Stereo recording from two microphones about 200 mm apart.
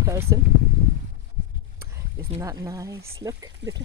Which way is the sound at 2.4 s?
15° right (ahead or behind).